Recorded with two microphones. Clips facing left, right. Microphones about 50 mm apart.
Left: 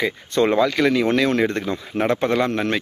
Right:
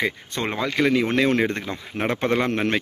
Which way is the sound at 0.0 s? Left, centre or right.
Right.